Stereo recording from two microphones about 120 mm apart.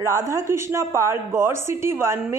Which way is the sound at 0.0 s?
25° right (ahead or behind).